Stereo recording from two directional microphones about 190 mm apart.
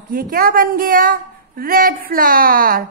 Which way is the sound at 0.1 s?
50° right (ahead or behind).